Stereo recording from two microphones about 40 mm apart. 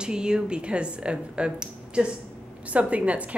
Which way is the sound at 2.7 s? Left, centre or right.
Right.